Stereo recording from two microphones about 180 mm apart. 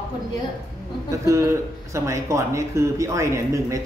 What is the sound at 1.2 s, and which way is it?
Speech, 15° right (ahead or behind).